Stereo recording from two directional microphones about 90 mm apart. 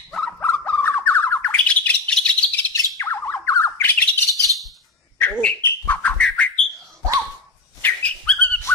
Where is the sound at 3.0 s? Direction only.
30° left (ahead or behind).